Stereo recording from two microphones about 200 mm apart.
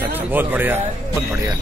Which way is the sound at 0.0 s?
10° right (ahead or behind).